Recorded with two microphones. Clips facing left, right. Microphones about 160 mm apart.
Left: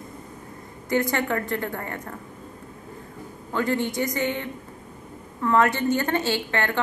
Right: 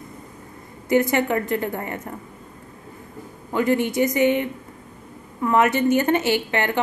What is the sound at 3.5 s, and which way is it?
A woman's voice, 15° right (ahead or behind).